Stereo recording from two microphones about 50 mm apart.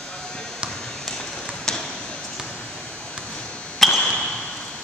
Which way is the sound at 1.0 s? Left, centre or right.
Centre.